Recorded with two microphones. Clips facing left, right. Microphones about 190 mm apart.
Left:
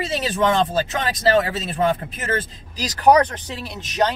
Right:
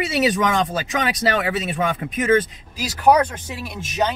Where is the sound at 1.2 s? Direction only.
30° left (ahead or behind).